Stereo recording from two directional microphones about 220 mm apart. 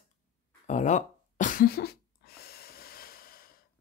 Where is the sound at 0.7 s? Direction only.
35° left (ahead or behind).